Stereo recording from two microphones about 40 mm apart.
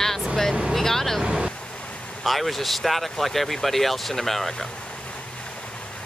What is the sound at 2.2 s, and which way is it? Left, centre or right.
Speech, centre.